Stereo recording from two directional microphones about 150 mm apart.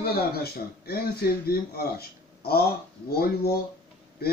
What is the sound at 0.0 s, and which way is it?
Speech, 90° left.